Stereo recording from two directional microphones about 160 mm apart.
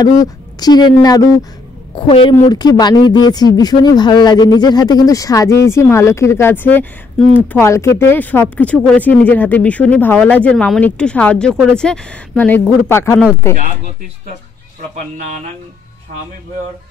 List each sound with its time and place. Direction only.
0.0 s speech: 25° left (ahead or behind)
2.0 s a woman's voice: 35° left (ahead or behind)
2.3 s speech: 25° left (ahead or behind)